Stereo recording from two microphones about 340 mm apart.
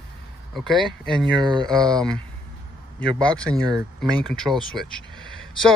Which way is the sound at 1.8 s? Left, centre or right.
Centre.